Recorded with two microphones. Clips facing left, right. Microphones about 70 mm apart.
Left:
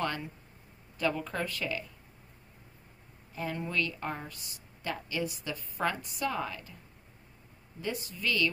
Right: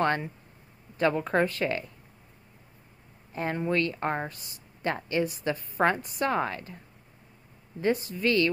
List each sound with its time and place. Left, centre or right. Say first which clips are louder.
0.0 s a woman's voice: right 7 dB; right
3.3 s a woman's voice: right 6 dB; right
7.8 s a woman's voice: right 9 dB; right